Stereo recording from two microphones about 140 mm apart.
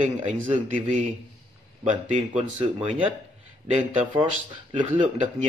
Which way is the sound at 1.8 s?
55° right (ahead or behind).